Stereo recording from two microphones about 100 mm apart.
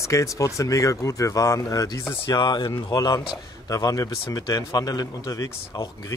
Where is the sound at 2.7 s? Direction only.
40° left (ahead or behind).